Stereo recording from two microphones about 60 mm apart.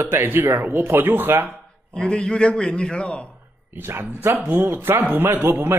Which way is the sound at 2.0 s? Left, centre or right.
Centre.